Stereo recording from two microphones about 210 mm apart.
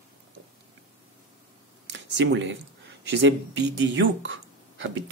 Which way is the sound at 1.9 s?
60° right (ahead or behind).